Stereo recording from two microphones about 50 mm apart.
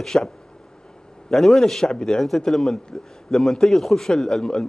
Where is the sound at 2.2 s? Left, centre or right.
Centre.